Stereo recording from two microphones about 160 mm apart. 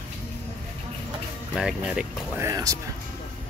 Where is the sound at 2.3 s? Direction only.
20° right (ahead or behind).